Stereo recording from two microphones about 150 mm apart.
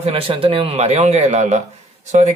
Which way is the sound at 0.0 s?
40° right (ahead or behind).